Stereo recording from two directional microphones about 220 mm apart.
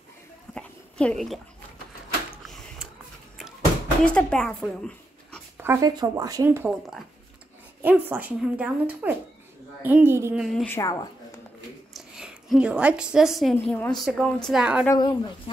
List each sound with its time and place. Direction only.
0.6 s dog: 5° left (ahead or behind)
4.0 s speech: 5° left (ahead or behind)
5.6 s speech: 15° right (ahead or behind)
10.4 s speech: 5° left (ahead or behind)
11.9 s a woman's voice: centre (ahead or behind)
14.9 s speech: 20° left (ahead or behind)